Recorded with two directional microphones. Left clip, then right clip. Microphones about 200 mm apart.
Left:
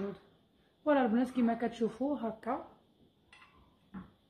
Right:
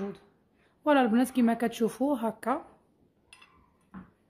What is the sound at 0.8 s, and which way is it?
A woman's voice, 55° right (ahead or behind).